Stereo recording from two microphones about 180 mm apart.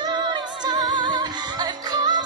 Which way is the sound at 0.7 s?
20° right (ahead or behind).